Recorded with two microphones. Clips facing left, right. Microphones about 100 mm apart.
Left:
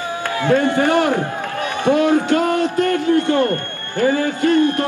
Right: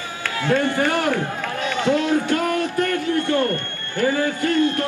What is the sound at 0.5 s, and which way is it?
Speech, 20° left (ahead or behind).